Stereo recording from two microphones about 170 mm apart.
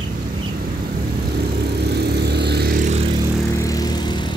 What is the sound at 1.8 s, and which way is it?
Vehicle, 70° right (ahead or behind).